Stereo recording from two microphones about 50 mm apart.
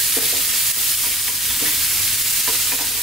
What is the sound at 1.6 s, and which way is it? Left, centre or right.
Stir, centre.